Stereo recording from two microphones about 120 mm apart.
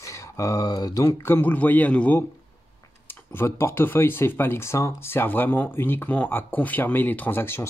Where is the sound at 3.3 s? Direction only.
20° left (ahead or behind).